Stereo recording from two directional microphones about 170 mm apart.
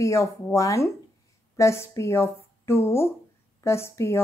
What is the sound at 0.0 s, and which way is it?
Speech, 15° left (ahead or behind).